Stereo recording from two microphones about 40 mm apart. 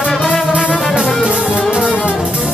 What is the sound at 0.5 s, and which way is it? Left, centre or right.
Music, right.